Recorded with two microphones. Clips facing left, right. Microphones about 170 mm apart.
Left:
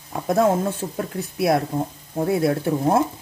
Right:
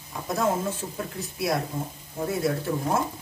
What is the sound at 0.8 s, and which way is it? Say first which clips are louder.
Speech: left 6 dB; 90° left.